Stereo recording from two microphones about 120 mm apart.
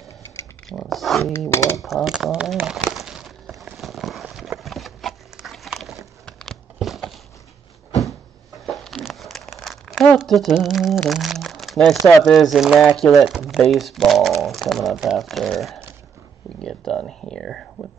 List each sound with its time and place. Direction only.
0.7 s speech: centre (ahead or behind)
1.5 s speech: 25° left (ahead or behind)
1.8 s speech: centre (ahead or behind)
2.6 s a sound: centre (ahead or behind)
8.6 s crumpling: centre (ahead or behind)
10.1 s speech: centre (ahead or behind)
14.4 s a sound: centre (ahead or behind)
16.6 s speech: 5° left (ahead or behind)